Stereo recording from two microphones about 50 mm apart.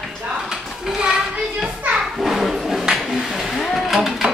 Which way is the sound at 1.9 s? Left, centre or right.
Centre.